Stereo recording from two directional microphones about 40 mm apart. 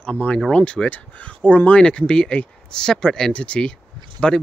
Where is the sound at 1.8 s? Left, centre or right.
Left.